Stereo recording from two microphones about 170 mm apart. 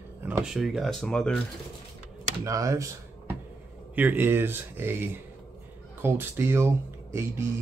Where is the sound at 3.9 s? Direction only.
10° right (ahead or behind).